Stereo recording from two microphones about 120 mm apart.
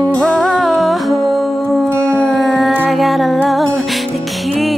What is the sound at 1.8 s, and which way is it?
Howl, 25° right (ahead or behind).